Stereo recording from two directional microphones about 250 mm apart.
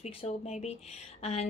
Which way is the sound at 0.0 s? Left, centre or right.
Left.